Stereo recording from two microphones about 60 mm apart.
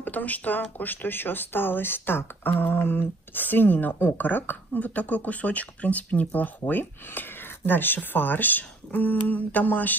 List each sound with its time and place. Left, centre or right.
0.0 s speech: left